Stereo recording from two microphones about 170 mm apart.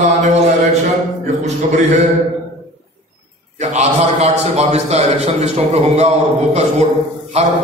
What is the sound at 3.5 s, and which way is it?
A man's voice, 40° right (ahead or behind).